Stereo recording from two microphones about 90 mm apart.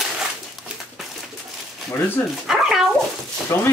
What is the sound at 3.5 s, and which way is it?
Speech, 30° left (ahead or behind).